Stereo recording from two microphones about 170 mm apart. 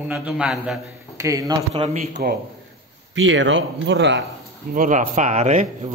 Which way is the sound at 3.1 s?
90° right.